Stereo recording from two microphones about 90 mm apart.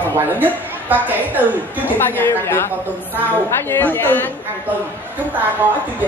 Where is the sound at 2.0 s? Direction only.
25° left (ahead or behind).